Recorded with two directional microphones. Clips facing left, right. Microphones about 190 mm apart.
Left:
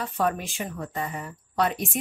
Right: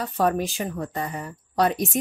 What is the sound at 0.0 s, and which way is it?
A woman's voice, 40° right (ahead or behind).